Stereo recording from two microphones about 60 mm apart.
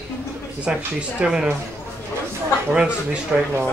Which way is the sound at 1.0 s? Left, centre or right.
Centre.